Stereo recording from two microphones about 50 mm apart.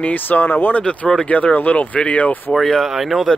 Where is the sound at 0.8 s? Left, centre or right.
Left.